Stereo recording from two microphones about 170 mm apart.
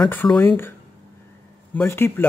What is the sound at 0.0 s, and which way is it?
Speech, 10° left (ahead or behind).